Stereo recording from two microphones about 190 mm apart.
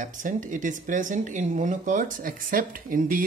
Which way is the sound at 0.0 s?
45° right (ahead or behind).